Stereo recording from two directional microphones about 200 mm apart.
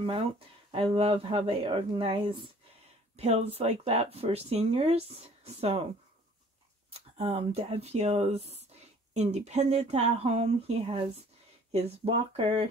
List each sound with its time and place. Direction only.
0.7 s speech: 30° right (ahead or behind)
6.9 s speech: 30° right (ahead or behind)